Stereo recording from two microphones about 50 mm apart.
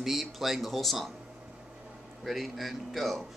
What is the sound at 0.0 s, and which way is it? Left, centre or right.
Speech, centre.